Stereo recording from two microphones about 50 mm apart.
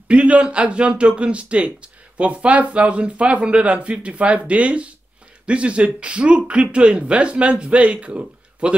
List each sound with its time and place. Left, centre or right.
0.1 s a man's voice: right